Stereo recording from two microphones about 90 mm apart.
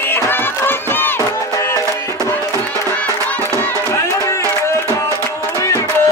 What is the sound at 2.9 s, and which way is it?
Music, 15° left (ahead or behind).